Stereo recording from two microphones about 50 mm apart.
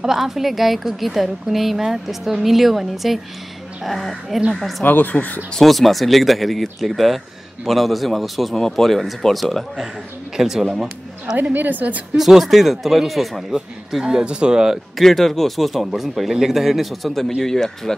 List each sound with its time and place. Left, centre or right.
0.0 s a woman's voice: centre
4.8 s speech: left
5.6 s a woman's voice: centre
11.5 s a woman's voice: right
12.2 s a woman's voice: centre
14.0 s speech: centre
15.0 s a woman's voice: centre